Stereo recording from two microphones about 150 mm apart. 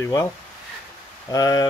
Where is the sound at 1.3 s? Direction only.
25° left (ahead or behind).